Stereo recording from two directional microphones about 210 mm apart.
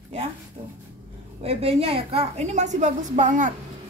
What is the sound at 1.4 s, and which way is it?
A woman's voice, 30° right (ahead or behind).